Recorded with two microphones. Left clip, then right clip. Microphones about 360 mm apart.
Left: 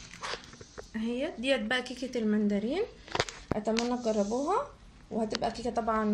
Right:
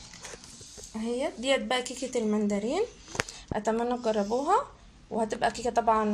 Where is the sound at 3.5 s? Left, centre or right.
Right.